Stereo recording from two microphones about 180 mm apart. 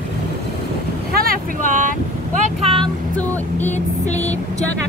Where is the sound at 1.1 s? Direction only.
55° right (ahead or behind).